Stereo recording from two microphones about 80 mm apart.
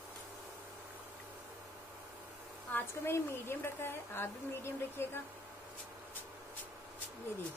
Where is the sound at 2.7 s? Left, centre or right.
Left.